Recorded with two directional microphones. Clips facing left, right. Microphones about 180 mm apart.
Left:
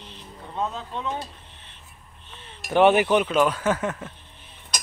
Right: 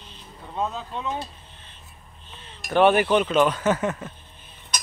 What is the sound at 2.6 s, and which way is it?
Speech, 15° left (ahead or behind).